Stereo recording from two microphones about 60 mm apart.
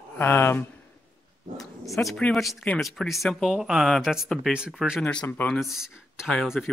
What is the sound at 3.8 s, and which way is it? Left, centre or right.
Speech, centre.